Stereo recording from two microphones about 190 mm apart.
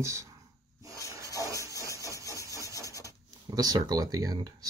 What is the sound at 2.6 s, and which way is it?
Vehicle, 15° left (ahead or behind).